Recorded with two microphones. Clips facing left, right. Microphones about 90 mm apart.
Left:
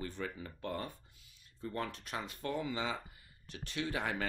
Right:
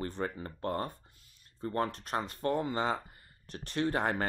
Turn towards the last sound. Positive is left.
turn(degrees=-45)  # may be behind; listen again after turning